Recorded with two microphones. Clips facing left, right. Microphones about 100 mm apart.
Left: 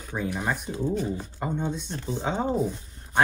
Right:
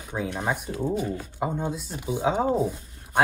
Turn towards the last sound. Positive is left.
turn(degrees=-5)  # may be behind; listen again after turning